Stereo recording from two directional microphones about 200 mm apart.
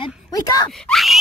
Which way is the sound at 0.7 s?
Centre (ahead or behind).